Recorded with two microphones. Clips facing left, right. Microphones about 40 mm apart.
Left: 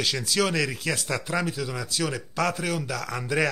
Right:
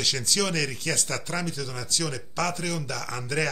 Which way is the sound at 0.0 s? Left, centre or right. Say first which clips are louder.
Left 2 dB; centre.